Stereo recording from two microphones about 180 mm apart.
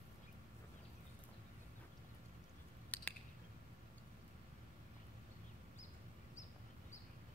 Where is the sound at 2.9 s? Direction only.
10° left (ahead or behind).